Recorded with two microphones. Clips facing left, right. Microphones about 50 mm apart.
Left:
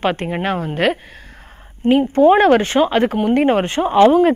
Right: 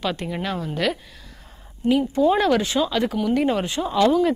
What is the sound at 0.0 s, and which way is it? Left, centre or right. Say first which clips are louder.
Speech: left 7 dB; left.